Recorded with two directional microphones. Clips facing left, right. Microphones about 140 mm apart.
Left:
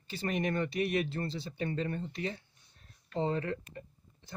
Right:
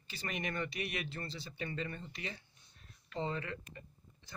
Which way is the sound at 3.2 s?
50° left (ahead or behind).